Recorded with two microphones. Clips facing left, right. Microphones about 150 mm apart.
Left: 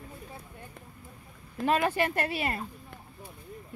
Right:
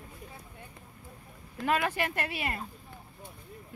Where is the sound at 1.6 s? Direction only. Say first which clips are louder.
Left 3 dB; 30° left (ahead or behind).